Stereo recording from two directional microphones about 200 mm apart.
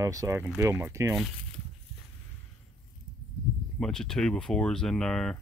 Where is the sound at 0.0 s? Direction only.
15° right (ahead or behind).